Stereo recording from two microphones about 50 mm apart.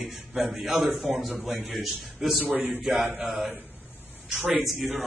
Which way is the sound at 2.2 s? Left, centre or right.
Centre.